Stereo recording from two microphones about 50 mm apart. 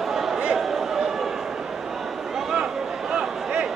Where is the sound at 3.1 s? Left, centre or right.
Centre.